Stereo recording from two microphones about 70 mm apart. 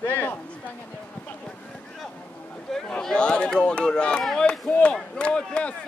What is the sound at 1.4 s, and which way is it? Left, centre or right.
Boat, centre.